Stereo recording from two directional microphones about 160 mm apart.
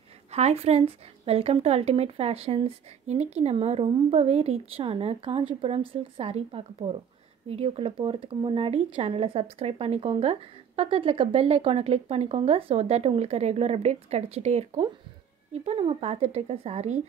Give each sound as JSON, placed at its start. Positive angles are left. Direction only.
{"t": 0.3, "sound": "speech", "side_deg": -45}